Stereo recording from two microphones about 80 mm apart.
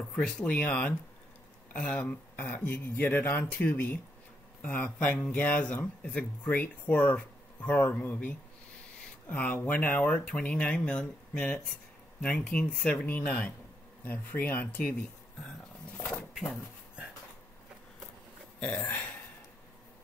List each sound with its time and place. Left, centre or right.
0.1 s speech: centre
16.0 s a sound: centre
18.6 s speech: centre